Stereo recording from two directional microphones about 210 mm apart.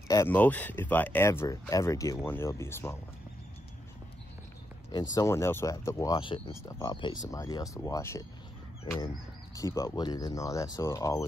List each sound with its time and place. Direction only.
0.1 s speech: 10° left (ahead or behind)
5.1 s speech: 15° left (ahead or behind)
9.8 s speech: 15° left (ahead or behind)